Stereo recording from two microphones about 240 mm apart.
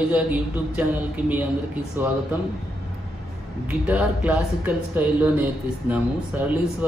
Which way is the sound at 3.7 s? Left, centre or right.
Centre.